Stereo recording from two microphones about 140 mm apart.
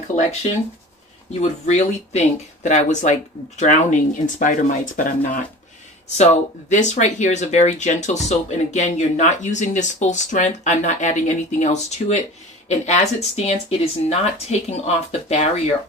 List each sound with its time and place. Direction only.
0.1 s speech: 50° left (ahead or behind)
1.7 s speech: 55° left (ahead or behind); by 5.4 s 70° left (ahead or behind)
6.7 s speech: 60° left (ahead or behind)